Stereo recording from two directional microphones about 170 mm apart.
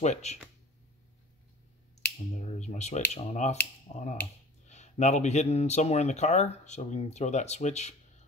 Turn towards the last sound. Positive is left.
turn(degrees=40)  # may be behind; listen again after turning